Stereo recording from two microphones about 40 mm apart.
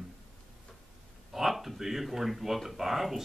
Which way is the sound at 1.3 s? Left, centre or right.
Centre.